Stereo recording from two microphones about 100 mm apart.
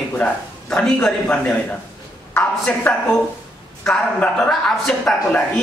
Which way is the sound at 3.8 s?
5° left (ahead or behind).